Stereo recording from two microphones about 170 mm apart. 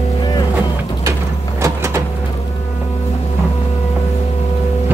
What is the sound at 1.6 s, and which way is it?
Vehicle, 15° right (ahead or behind).